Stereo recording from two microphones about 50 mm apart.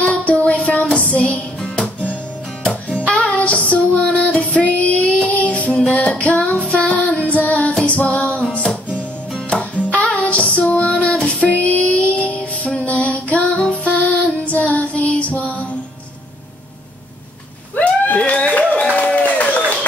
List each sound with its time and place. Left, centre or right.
0.0 s music: left
1.3 s music: centre
3.0 s music: left
6.5 s child singing: left
7.5 s music: centre
7.8 s female singing: left
9.9 s music: left
17.7 s a sound: left
18.9 s applause: left
19.3 s a sound: left